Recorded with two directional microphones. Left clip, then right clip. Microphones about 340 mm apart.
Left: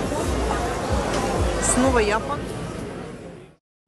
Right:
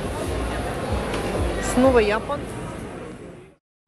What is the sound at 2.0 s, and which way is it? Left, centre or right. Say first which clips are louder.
Speech: right 2 dB; centre.